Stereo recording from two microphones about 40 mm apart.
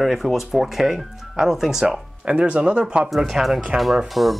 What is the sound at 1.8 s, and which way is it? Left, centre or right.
Speech, right.